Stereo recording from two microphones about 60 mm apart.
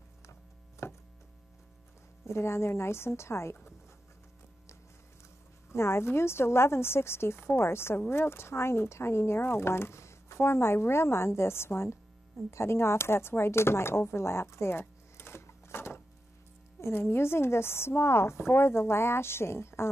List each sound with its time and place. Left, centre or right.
0.3 s a sound: left
2.2 s speech: left
5.7 s speech: left